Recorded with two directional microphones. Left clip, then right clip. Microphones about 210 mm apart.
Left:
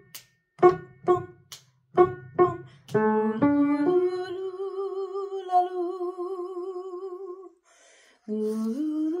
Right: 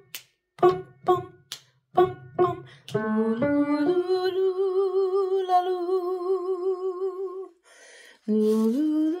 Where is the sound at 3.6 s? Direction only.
35° right (ahead or behind).